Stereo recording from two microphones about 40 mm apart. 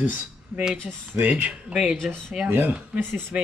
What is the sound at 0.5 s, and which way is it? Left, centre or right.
Speech, right.